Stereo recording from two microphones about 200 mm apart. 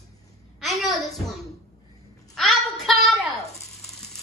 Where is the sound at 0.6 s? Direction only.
Centre (ahead or behind).